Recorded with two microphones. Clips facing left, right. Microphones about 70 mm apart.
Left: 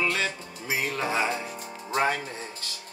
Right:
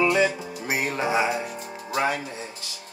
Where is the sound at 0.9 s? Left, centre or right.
Centre.